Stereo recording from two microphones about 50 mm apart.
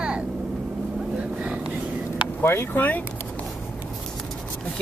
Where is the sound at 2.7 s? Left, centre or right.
Left.